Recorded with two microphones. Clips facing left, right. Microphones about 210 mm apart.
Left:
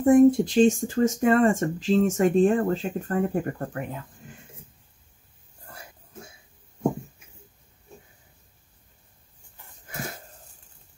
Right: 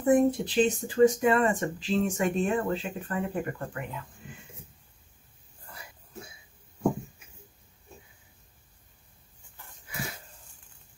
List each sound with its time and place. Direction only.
0.0 s speech: 45° left (ahead or behind)
9.8 s wheeze: 45° left (ahead or behind)